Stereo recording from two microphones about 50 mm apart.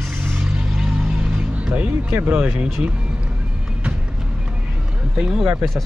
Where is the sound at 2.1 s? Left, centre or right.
Right.